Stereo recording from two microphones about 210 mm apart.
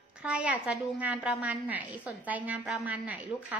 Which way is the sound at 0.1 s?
5° right (ahead or behind).